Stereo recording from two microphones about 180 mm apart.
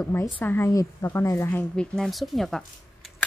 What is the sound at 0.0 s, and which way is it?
A woman's voice, 15° left (ahead or behind).